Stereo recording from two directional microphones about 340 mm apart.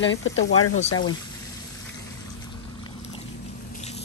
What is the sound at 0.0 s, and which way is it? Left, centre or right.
Speech, left.